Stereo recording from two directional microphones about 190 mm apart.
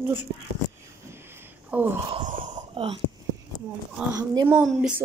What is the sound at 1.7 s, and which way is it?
Speech, 5° right (ahead or behind).